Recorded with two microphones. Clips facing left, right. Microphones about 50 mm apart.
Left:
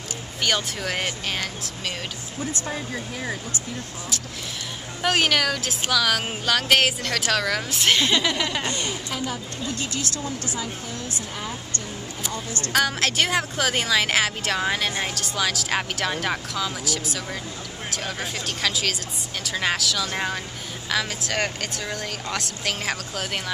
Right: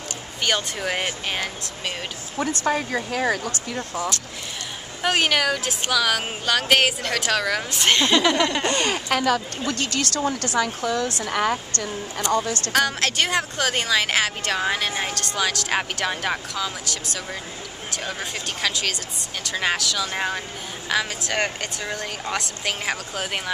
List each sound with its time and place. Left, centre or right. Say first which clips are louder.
0.4 s speech: right 1 dB; centre
2.3 s speech: right 8 dB; right
5.0 s speech: right 1 dB; centre
8.6 s speech: right 6 dB; right
12.3 s speech: right 11 dB; right
12.7 s speech: even; centre